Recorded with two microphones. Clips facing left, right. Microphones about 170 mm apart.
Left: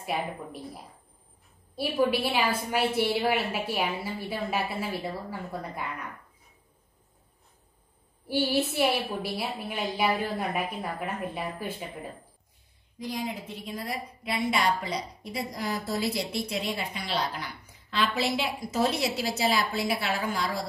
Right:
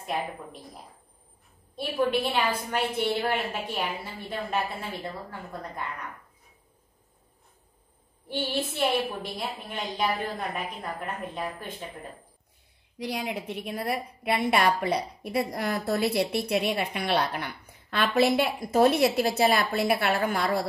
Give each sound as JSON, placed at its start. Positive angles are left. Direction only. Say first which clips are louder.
{"t": 0.0, "sound": "speech", "louder": "even", "side_deg": 5}
{"t": 1.8, "sound": "a woman's voice", "louder": "even", "side_deg": 5}
{"t": 8.3, "sound": "a woman's voice", "louder": "left 4 dB", "side_deg": 5}
{"t": 13.0, "sound": "a woman's voice", "louder": "right 2 dB", "side_deg": -70}